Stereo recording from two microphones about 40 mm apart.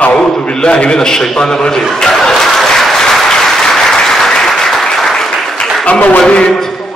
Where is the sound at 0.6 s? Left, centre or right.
Left.